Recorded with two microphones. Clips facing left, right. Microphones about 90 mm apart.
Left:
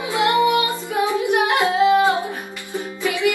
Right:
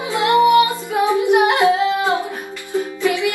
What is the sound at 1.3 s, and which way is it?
Humming, 20° right (ahead or behind).